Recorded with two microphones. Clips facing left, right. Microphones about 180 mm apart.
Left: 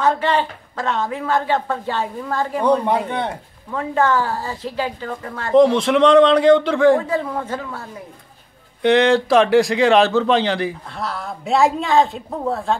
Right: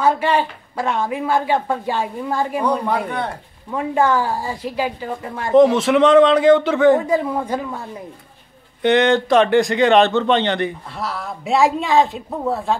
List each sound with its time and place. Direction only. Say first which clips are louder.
0.0 s a woman's voice: right 1 dB; 10° right (ahead or behind)
2.6 s speech: left 3 dB; 25° left (ahead or behind)
3.7 s a woman's voice: right 1 dB; 10° right (ahead or behind)
5.5 s a man's voice: right 1 dB; 5° right (ahead or behind)
7.1 s a woman's voice: right 3 dB; 15° right (ahead or behind)
8.8 s a man's voice: left 1 dB; centre (ahead or behind)